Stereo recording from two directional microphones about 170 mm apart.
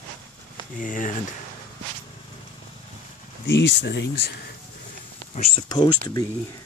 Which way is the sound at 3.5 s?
90° left.